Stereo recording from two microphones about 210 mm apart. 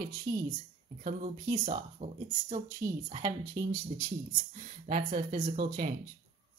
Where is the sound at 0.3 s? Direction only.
20° right (ahead or behind).